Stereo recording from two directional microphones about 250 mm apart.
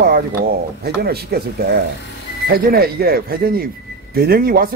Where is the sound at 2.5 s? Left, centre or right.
Right.